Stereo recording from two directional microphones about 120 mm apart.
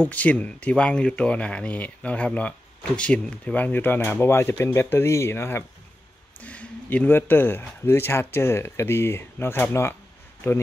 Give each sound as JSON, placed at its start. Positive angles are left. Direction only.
{"t": 0.0, "sound": "speech", "side_deg": 10}
{"t": 6.4, "sound": "speech", "side_deg": 10}